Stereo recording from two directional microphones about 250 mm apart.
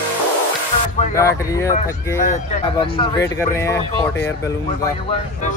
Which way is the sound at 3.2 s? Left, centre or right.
Centre.